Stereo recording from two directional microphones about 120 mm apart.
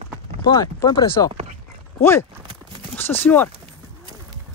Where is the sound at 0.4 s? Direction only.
35° left (ahead or behind).